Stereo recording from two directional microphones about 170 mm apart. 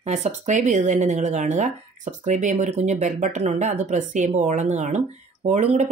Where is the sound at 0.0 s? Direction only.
45° right (ahead or behind).